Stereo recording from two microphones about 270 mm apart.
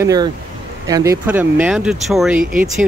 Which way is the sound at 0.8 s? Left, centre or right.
Centre.